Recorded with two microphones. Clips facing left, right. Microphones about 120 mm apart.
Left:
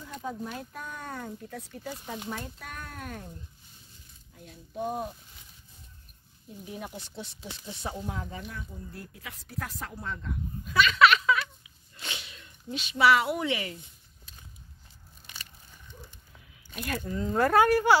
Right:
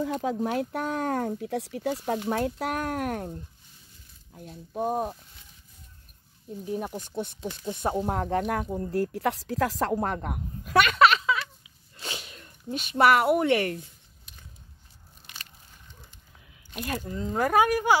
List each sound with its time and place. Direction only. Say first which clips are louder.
0.0 s speech: right 9 dB; 90° right; by 3.4 s 60° right (ahead or behind)
4.3 s speech: right 6 dB; 45° right (ahead or behind)
6.6 s speech: right 8 dB; 40° right (ahead or behind); by 11.0 s 60° right (ahead or behind)
11.0 s a sound: even; 35° right (ahead or behind)
12.0 s speech: right 3 dB; 40° right (ahead or behind); by 13.7 s 60° right (ahead or behind)
16.7 s speech: right 1 dB; 25° right (ahead or behind)